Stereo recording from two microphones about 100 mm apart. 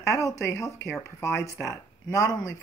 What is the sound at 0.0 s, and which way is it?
Speech, 30° left (ahead or behind).